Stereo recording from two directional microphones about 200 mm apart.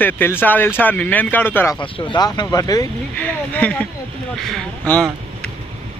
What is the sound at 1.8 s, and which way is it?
Speech, 25° left (ahead or behind).